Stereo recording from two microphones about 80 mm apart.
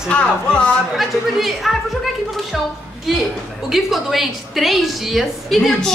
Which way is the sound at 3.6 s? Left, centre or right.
Centre.